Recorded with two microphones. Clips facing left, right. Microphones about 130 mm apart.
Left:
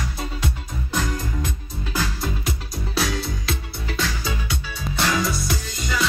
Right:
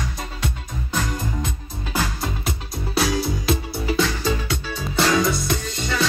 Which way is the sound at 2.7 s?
5° right (ahead or behind).